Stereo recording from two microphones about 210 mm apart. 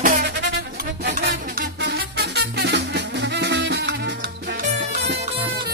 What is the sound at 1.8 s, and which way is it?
Music, 55° right (ahead or behind).